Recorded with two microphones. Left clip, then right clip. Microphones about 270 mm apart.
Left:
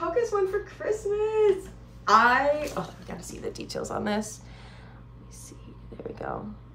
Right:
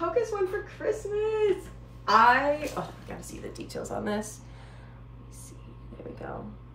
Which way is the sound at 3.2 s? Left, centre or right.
Left.